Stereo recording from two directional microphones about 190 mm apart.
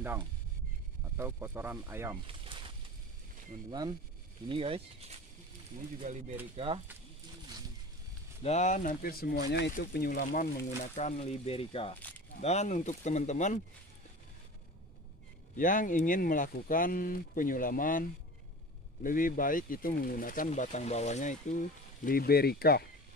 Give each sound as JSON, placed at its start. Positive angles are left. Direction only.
{"t": 1.1, "sound": "speech", "side_deg": -10}
{"t": 2.2, "sound": "a sound", "side_deg": -25}
{"t": 4.5, "sound": "speech", "side_deg": -30}
{"t": 8.4, "sound": "speech", "side_deg": 35}
{"t": 9.8, "sound": "speech", "side_deg": 50}
{"t": 15.5, "sound": "speech", "side_deg": 45}
{"t": 19.0, "sound": "speech", "side_deg": 45}